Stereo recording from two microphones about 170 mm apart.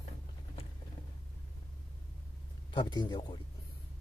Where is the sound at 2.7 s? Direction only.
25° left (ahead or behind).